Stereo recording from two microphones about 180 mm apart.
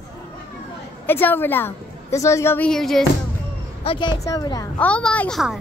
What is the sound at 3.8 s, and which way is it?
Speech, 30° left (ahead or behind).